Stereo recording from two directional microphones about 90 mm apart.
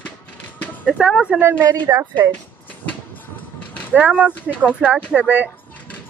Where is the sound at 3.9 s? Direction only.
15° right (ahead or behind).